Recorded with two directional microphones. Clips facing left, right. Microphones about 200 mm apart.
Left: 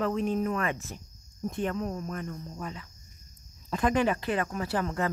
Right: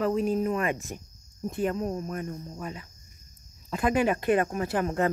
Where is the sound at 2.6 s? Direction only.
10° right (ahead or behind).